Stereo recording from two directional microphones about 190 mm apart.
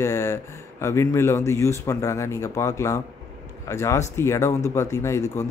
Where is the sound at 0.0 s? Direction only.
15° left (ahead or behind).